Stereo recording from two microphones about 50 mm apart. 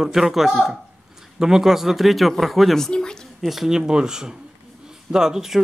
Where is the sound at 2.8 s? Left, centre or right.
Centre.